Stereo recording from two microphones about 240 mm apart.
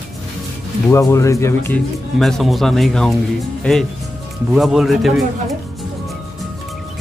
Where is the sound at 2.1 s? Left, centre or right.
Centre.